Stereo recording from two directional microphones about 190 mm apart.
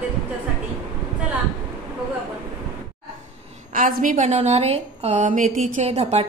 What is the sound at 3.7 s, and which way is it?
A woman's voice, 45° right (ahead or behind).